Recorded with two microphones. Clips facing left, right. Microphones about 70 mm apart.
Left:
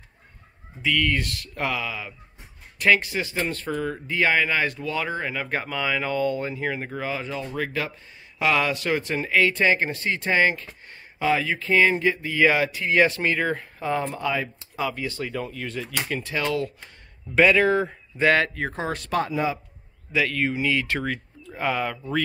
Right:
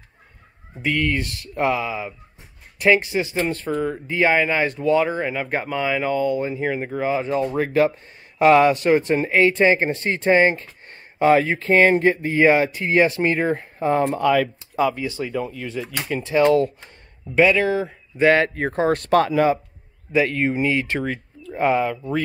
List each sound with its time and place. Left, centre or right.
1.0 s speech: right
7.0 s a man's voice: right
14.0 s speech: right
14.8 s speech: right
15.0 s speech: centre
16.3 s speech: right
17.4 s speech: centre
18.1 s a man's voice: right
20.1 s speech: right
21.7 s speech: centre